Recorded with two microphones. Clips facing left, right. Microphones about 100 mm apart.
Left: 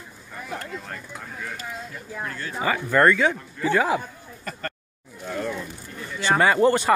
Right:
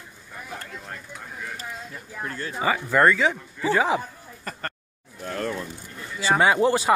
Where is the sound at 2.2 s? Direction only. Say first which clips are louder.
Right 1 dB; 30° right (ahead or behind).